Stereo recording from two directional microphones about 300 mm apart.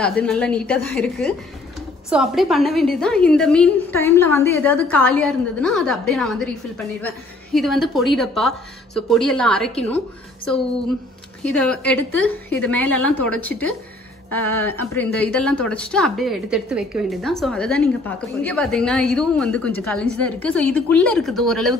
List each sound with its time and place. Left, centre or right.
0.0 s speech: centre
7.5 s speech: centre
11.5 s speech: centre